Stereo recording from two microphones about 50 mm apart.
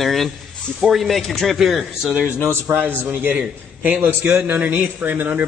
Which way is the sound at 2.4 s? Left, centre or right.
Right.